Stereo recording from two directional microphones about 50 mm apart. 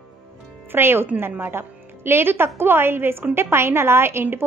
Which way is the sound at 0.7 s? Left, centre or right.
Right.